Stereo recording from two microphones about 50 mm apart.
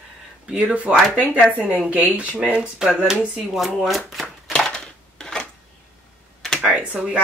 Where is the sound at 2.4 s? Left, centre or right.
Centre.